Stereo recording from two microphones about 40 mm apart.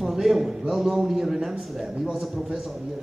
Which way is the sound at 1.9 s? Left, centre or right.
Right.